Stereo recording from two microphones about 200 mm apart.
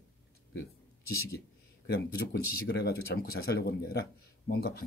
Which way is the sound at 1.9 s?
50° left (ahead or behind).